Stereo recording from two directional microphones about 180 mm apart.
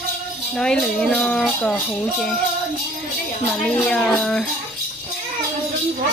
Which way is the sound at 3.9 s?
5° left (ahead or behind).